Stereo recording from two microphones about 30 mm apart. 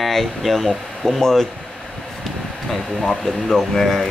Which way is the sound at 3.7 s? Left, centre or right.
Centre.